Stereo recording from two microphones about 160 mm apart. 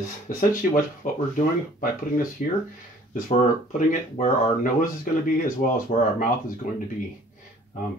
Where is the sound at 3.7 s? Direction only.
50° left (ahead or behind).